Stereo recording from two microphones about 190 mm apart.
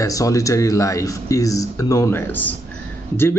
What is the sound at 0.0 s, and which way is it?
A man's voice, 15° left (ahead or behind).